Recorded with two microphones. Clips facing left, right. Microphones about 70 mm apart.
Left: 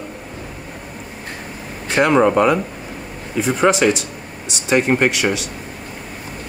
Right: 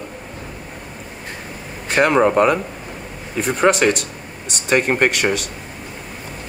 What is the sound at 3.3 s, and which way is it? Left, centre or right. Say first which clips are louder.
Speech: even; right.